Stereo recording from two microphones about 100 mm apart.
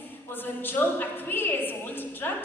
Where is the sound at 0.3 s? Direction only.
20° left (ahead or behind).